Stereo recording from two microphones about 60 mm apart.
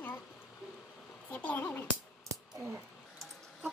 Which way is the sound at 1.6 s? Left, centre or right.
Left.